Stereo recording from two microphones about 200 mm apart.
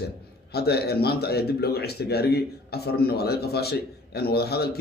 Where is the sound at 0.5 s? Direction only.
55° left (ahead or behind).